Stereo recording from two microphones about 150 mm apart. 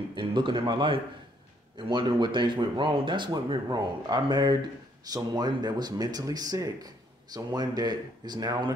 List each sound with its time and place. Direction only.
0.1 s speech: 35° right (ahead or behind)